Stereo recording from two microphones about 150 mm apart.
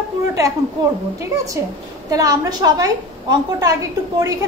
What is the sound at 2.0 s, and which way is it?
A woman's voice, 25° right (ahead or behind).